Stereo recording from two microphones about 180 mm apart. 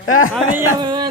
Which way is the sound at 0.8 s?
25° right (ahead or behind).